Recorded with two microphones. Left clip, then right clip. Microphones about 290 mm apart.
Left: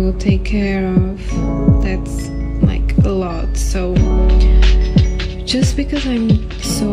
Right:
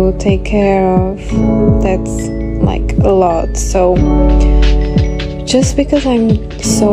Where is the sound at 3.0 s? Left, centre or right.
Right.